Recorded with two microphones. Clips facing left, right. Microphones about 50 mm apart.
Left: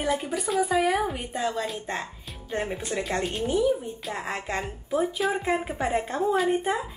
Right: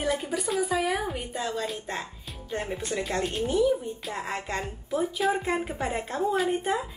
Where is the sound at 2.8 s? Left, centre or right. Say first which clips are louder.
Left 1 dB; centre.